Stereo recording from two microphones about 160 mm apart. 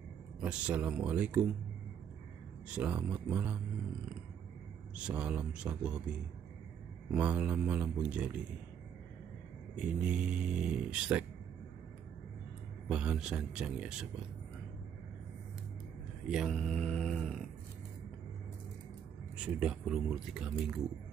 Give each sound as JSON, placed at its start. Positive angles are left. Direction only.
{"t": 0.4, "sound": "speech", "side_deg": -10}
{"t": 2.7, "sound": "speech", "side_deg": -10}
{"t": 4.9, "sound": "speech", "side_deg": -5}
{"t": 7.1, "sound": "speech", "side_deg": -10}
{"t": 9.8, "sound": "speech", "side_deg": -5}
{"t": 12.8, "sound": "a man's voice", "side_deg": -5}
{"t": 16.3, "sound": "mantra", "side_deg": 0}
{"t": 19.4, "sound": "a man's voice", "side_deg": -5}